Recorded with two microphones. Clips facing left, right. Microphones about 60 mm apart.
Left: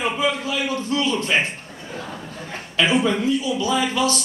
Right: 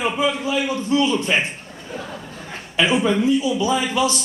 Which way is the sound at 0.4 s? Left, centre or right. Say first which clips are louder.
Right 2 dB; centre.